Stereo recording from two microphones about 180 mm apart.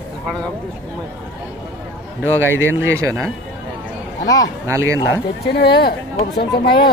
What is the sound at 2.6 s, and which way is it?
Speech, 90° left.